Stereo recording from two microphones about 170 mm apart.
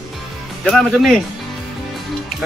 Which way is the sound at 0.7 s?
Centre (ahead or behind).